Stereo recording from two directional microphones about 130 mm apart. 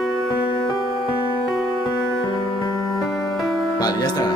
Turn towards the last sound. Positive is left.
turn(degrees=30)  # may be behind; listen again after turning